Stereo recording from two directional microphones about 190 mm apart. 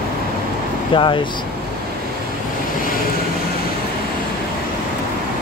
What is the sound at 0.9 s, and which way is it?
Speech, 25° left (ahead or behind).